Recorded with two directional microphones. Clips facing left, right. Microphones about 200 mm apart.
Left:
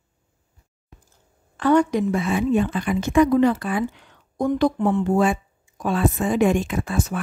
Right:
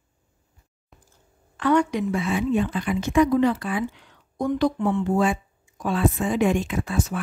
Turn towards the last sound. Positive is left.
turn(degrees=45)  # may be behind; listen again after turning